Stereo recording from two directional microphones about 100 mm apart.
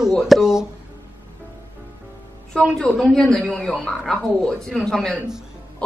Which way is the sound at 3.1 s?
5° left (ahead or behind).